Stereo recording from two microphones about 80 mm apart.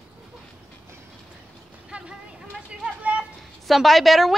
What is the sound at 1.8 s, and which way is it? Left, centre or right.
Vehicle, centre.